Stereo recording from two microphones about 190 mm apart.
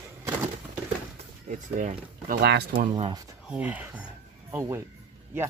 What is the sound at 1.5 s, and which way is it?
Speech, 40° right (ahead or behind).